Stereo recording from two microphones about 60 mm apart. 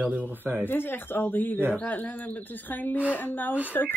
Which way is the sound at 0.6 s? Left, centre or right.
Left.